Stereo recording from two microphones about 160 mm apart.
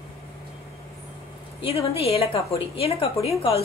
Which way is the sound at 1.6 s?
40° left (ahead or behind).